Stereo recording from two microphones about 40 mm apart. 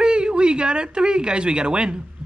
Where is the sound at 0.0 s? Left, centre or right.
Right.